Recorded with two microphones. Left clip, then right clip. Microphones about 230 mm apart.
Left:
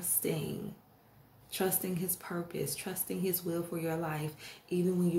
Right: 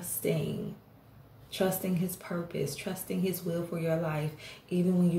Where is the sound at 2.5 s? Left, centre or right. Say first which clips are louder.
Right 3 dB; left.